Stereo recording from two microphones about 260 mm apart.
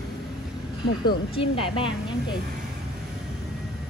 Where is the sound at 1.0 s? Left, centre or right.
Left.